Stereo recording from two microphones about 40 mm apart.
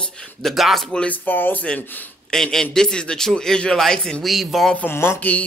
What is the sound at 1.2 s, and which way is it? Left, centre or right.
Speech, left.